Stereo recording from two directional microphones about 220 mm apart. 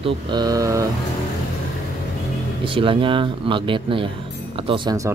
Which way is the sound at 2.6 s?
25° right (ahead or behind).